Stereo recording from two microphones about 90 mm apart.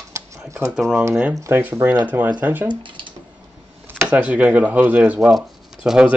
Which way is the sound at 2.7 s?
65° right (ahead or behind).